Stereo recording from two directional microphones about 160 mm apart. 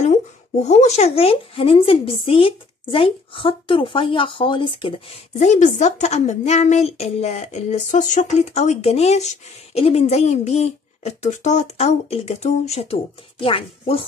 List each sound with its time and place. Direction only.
0.6 s a woman's voice: 45° left (ahead or behind)
5.4 s a woman's voice: 45° left (ahead or behind)